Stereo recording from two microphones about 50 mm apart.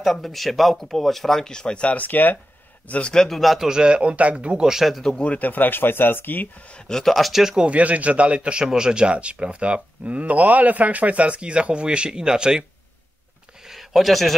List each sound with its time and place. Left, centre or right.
0.0 s speech: centre; by 2.0 s left
2.0 s speech: left
2.9 s a man's voice: centre
3.3 s speech: centre; by 4.6 s right
4.6 s speech: centre
5.2 s speech: left
6.9 s speech: centre
7.6 s speech: right
13.7 s a sound: centre